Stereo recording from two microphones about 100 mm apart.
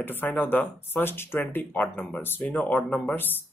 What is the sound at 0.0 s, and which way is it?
Speech, 20° left (ahead or behind).